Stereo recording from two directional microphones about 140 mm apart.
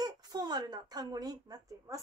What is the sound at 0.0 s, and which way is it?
Speech, 30° right (ahead or behind).